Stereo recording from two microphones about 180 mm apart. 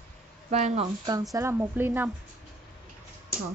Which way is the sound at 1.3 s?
15° right (ahead or behind).